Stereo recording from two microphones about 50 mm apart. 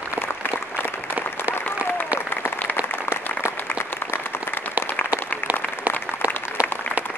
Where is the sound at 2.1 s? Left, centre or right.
Left.